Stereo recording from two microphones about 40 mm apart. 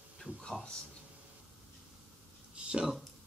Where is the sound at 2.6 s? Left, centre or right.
Right.